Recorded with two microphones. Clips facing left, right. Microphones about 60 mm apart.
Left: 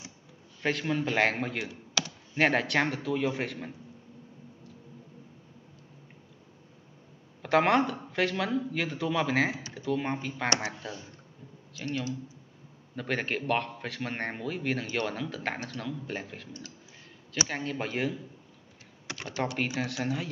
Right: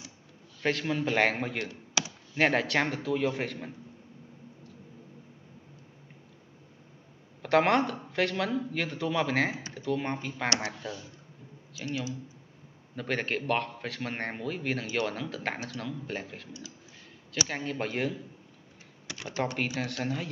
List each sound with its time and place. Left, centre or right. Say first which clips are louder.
0.6 s a man's voice: even; centre
7.4 s a man's voice: even; centre
11.7 s a man's voice: left 1 dB; centre
17.5 s a man's voice: even; centre
19.2 s speech: right 1 dB; right
19.7 s speech: left 1 dB; centre